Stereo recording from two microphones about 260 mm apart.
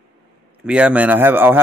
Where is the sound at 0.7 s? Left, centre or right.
Centre.